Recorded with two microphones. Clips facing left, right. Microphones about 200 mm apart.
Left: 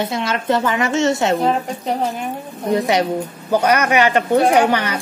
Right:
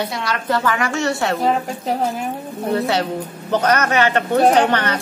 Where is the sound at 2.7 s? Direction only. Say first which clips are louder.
Left 3 dB; 15° left (ahead or behind).